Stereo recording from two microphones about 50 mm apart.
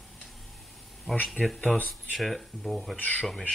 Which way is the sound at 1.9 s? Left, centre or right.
Centre.